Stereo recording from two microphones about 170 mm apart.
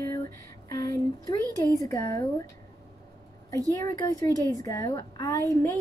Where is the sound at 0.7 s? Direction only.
20° left (ahead or behind).